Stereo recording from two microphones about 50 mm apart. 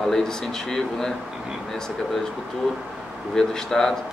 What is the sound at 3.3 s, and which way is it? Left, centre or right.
Speech, centre.